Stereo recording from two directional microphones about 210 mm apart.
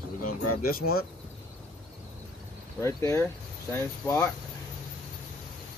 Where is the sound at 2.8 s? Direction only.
15° left (ahead or behind).